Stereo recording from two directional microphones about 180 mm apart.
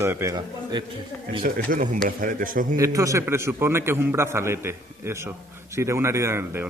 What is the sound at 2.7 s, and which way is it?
A man's voice, 15° right (ahead or behind).